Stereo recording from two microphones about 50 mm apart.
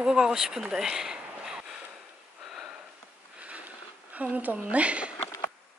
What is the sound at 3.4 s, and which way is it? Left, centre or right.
Sniff, right.